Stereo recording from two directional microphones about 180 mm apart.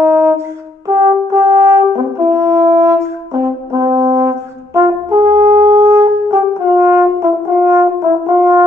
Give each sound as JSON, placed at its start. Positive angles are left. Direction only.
{"t": 0.0, "sound": "brass instrument", "side_deg": -15}
{"t": 0.8, "sound": "french horn", "side_deg": -15}
{"t": 4.7, "sound": "brass instrument", "side_deg": -15}